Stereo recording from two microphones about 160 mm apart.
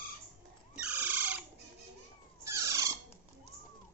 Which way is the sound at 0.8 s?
10° right (ahead or behind).